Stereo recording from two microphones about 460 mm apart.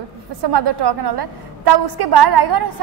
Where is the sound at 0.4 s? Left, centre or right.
Right.